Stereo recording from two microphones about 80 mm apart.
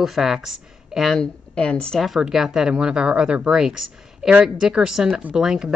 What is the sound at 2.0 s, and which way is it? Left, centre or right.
Speech, centre.